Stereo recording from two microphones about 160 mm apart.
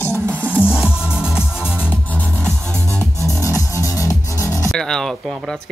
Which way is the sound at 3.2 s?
20° left (ahead or behind).